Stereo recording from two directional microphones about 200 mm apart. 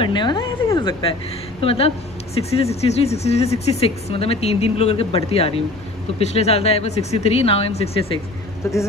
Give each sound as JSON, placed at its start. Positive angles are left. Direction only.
{"t": 0.0, "sound": "a woman's voice", "side_deg": 25}